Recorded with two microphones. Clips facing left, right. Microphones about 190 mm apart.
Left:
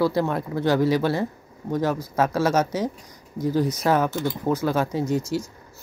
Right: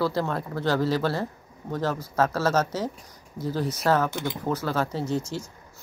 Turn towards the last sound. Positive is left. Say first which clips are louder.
# left 4 dB
turn(degrees=10)  # may be behind; listen again after turning